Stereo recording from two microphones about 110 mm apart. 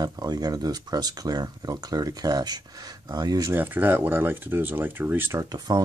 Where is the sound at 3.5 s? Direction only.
15° right (ahead or behind).